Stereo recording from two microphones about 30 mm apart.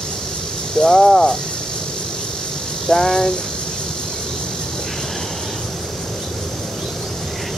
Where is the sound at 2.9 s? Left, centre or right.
Centre.